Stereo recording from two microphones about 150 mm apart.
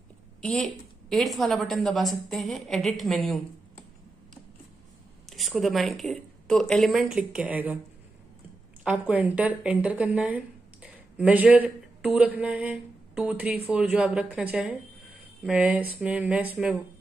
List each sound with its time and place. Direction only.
0.4 s a woman's voice: 5° left (ahead or behind)
5.3 s speech: centre (ahead or behind)
8.8 s speech: 10° right (ahead or behind)